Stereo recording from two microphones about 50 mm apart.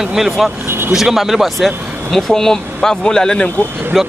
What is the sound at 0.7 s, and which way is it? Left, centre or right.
Vehicle, right.